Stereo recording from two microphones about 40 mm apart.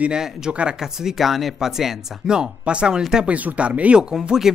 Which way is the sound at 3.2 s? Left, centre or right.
Right.